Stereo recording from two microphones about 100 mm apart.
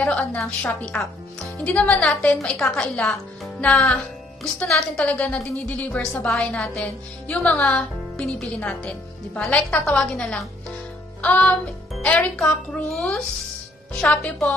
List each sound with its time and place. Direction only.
0.0 s a woman's voice: 15° left (ahead or behind)